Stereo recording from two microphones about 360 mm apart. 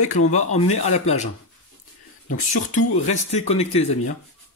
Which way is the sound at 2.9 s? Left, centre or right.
Centre.